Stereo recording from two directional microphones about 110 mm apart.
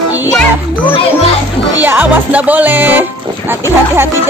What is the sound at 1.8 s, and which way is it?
Music, 15° right (ahead or behind).